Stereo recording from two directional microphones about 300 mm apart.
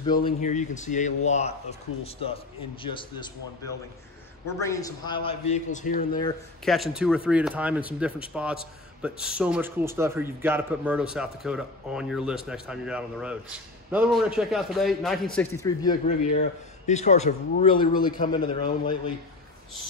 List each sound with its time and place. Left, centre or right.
0.0 s a man's voice: centre
6.6 s a man's voice: centre
16.1 s a man's voice: left